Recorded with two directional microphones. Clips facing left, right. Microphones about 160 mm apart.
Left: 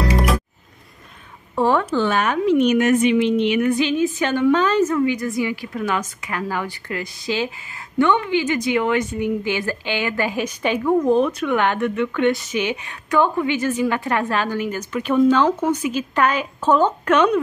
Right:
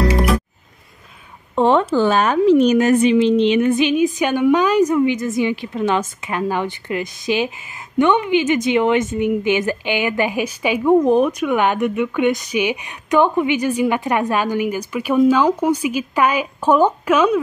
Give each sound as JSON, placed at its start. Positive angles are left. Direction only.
{"t": 1.5, "sound": "a woman's voice", "side_deg": -20}
{"t": 2.0, "sound": "a woman's voice", "side_deg": -35}
{"t": 10.9, "sound": "speech", "side_deg": -20}